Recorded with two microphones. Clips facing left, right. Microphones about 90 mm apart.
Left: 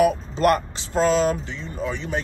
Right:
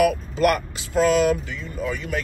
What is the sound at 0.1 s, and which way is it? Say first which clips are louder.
Speech: left 1 dB; 35° left (ahead or behind).